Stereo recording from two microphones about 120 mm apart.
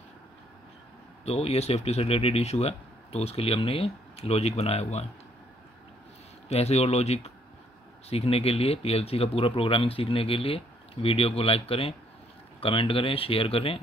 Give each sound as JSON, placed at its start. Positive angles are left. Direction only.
{"t": 1.2, "sound": "speech", "side_deg": 55}
{"t": 6.5, "sound": "speech", "side_deg": 60}